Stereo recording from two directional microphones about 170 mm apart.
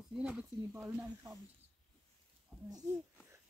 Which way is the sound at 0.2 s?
5° right (ahead or behind).